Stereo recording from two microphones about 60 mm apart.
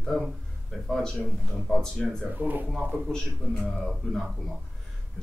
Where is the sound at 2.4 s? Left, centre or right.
Right.